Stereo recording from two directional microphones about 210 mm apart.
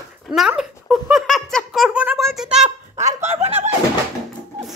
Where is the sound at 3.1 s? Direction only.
30° right (ahead or behind).